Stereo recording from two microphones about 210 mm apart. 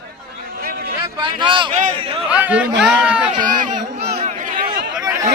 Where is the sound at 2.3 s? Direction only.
5° right (ahead or behind).